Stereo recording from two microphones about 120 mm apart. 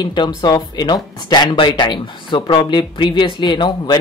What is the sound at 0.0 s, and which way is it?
Speech, 40° left (ahead or behind).